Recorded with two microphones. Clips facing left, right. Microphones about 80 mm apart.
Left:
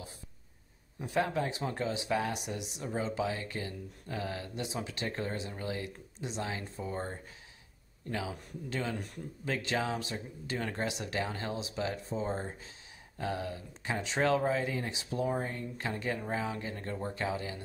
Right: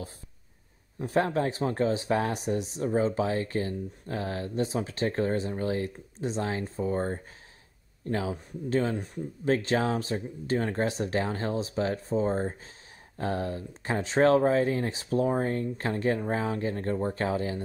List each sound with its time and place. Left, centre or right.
0.9 s speech: right
8.9 s speech: right
9.5 s speech: right